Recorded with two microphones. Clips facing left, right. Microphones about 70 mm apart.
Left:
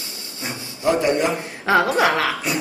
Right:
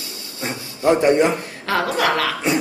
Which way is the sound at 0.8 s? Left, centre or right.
Right.